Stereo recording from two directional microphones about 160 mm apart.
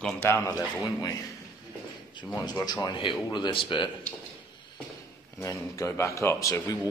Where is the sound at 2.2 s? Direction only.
30° left (ahead or behind).